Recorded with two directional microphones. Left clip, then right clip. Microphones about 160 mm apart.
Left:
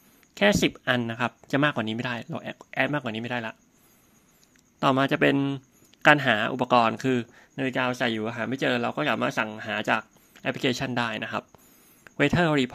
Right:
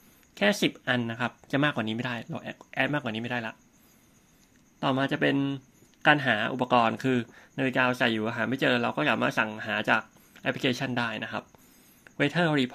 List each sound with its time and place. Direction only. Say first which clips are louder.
0.3 s speech: left 3 dB; 30° left (ahead or behind)
4.7 s speech: left 5 dB; 40° left (ahead or behind)